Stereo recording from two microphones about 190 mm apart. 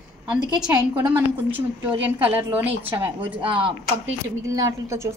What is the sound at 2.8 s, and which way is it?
Speech, 30° right (ahead or behind).